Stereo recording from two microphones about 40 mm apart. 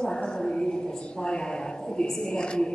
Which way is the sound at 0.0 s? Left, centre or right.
Left.